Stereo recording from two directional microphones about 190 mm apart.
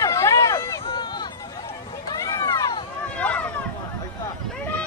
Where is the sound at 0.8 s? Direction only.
25° left (ahead or behind).